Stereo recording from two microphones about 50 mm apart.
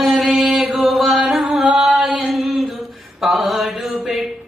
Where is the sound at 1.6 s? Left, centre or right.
Centre.